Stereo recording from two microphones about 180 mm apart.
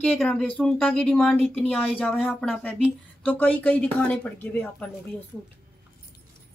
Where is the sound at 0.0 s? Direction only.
5° left (ahead or behind).